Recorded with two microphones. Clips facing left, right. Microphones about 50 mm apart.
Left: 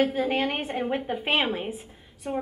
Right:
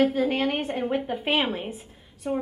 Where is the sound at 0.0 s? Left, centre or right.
Centre.